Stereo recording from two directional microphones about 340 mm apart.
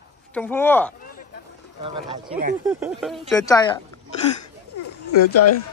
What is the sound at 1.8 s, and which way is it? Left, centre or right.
Speech, centre.